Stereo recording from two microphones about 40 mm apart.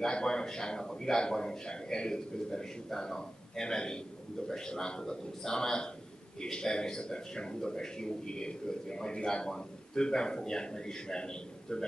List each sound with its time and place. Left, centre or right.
0.0 s a man's voice: centre